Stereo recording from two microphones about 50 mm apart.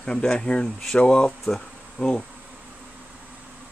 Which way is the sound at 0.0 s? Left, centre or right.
Centre.